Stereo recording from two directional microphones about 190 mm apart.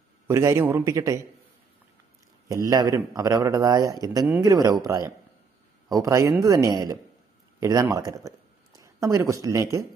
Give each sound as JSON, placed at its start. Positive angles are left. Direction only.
{"t": 0.3, "sound": "speech", "side_deg": -15}
{"t": 2.4, "sound": "speech", "side_deg": -20}